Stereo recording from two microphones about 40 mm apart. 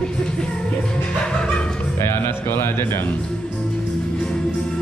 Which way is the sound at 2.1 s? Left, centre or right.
Left.